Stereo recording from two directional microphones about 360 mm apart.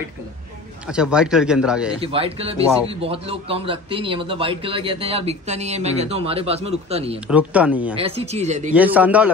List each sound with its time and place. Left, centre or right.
0.8 s a man's voice: centre
2.0 s a man's voice: centre
7.2 s a man's voice: centre
7.9 s a man's voice: centre
8.7 s a man's voice: centre